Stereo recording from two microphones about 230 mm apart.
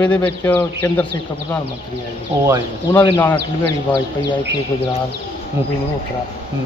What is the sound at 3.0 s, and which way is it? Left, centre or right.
Speech, centre.